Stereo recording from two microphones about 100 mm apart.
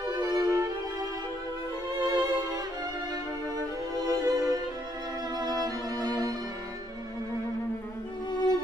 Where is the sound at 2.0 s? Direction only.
45° right (ahead or behind).